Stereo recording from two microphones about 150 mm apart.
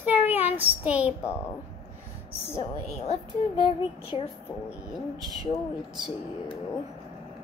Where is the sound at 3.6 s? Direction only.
35° left (ahead or behind).